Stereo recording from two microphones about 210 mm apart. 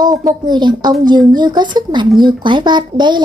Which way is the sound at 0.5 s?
20° right (ahead or behind).